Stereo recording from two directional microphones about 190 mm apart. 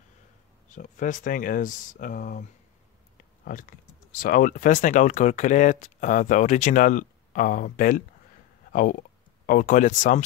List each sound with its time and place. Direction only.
0.7 s speech: 45° left (ahead or behind)
3.4 s speech: 45° left (ahead or behind)
9.5 s speech: 45° left (ahead or behind)